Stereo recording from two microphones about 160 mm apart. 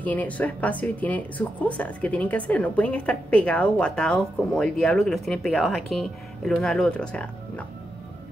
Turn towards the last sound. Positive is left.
turn(degrees=10)  # may be behind; listen again after turning